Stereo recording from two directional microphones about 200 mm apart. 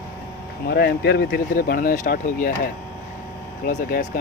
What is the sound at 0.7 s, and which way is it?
Speech, 55° left (ahead or behind).